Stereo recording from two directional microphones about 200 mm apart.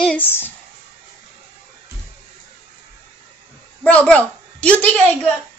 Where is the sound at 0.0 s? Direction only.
5° left (ahead or behind).